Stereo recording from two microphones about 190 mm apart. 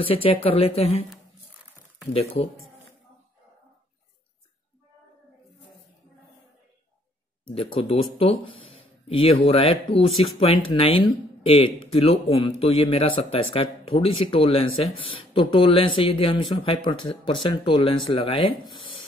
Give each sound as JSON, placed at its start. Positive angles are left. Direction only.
{"t": 0.0, "sound": "speech", "side_deg": 30}
{"t": 7.4, "sound": "a man's voice", "side_deg": 30}